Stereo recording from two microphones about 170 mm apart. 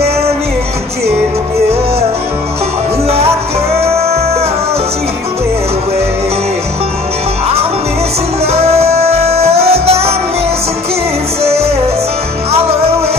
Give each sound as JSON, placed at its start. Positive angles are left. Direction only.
{"t": 3.7, "sound": "music", "side_deg": -35}
{"t": 8.5, "sound": "music", "side_deg": -35}